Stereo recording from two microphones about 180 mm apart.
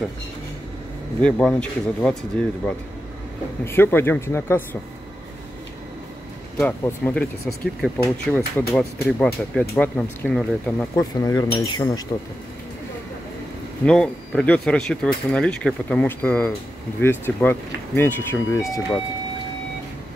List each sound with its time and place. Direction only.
1.2 s speech: 5° left (ahead or behind)
3.6 s speech: 10° left (ahead or behind)
6.8 s speech: 10° left (ahead or behind)
13.8 s speech: 5° left (ahead or behind)